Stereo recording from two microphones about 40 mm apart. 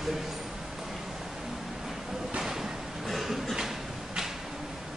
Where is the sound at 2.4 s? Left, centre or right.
Centre.